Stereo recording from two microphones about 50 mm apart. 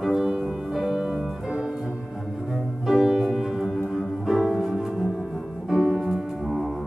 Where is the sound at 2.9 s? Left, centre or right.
Centre.